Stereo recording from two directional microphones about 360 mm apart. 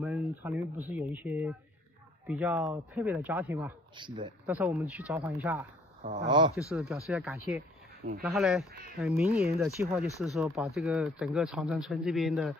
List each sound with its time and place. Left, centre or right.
0.0 s speech: centre
6.7 s speech: centre
10.0 s speech: centre